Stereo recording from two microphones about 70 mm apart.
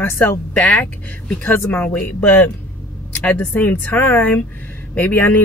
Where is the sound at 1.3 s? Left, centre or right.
Left.